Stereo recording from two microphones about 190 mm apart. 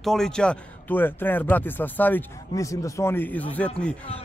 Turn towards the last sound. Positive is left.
turn(degrees=10)  # may be behind; listen again after turning